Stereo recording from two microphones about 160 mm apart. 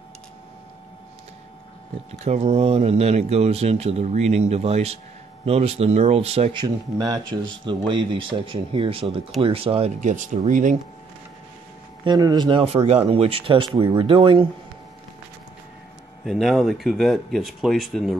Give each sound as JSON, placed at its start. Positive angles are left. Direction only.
{"t": 2.2, "sound": "speech", "side_deg": -40}
{"t": 7.0, "sound": "speech", "side_deg": -25}
{"t": 12.0, "sound": "speech", "side_deg": -25}
{"t": 16.3, "sound": "speech", "side_deg": 0}